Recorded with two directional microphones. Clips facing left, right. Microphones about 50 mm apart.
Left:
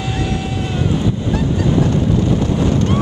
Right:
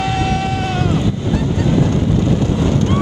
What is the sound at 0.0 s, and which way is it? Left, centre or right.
Vehicle, right.